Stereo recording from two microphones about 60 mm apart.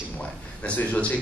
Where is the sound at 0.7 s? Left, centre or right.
Left.